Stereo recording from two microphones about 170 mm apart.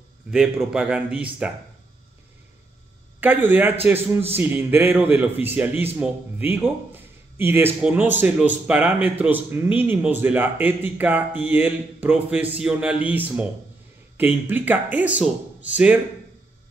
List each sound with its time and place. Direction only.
0.3 s speech: 5° right (ahead or behind)
3.2 s speech: 10° right (ahead or behind)